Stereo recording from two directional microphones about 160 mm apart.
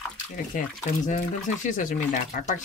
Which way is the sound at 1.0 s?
50° left (ahead or behind).